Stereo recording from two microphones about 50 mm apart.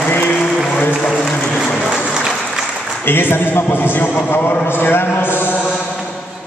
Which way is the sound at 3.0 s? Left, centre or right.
Left.